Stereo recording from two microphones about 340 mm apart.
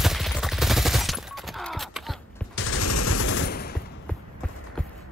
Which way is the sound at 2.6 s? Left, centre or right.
Left.